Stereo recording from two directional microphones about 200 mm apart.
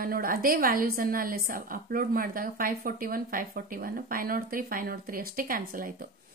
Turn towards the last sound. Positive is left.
turn(degrees=-45)  # may be behind; listen again after turning